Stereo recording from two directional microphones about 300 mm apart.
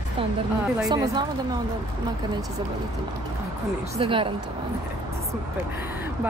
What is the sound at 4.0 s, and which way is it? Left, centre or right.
Speech, centre.